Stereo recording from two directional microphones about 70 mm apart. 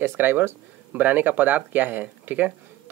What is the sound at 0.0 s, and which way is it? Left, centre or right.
Speech, right.